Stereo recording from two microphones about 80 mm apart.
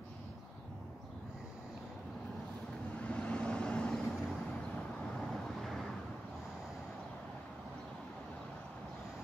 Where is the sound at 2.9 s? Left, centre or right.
Centre.